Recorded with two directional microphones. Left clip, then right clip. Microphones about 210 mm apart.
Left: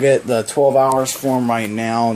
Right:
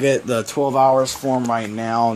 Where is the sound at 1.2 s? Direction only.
Centre (ahead or behind).